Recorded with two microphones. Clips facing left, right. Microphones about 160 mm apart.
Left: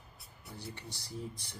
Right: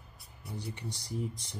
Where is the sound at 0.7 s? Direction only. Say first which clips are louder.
Right 5 dB; 15° right (ahead or behind).